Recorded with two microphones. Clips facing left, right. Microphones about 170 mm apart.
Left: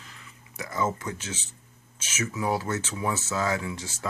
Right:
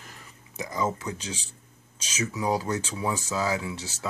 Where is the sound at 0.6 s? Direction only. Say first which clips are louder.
Even; 15° right (ahead or behind).